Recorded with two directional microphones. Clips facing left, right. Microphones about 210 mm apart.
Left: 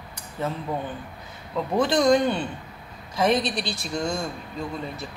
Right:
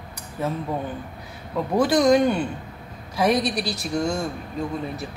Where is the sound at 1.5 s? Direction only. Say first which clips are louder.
Right 2 dB; 10° right (ahead or behind).